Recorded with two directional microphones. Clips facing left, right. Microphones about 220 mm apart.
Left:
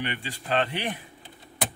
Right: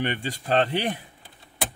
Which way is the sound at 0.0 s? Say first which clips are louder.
Right 5 dB; 45° right (ahead or behind).